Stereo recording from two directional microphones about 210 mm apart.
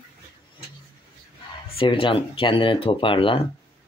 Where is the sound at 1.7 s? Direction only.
25° left (ahead or behind).